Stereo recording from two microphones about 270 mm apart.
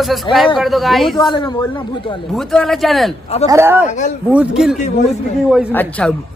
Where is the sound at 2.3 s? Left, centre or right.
Centre.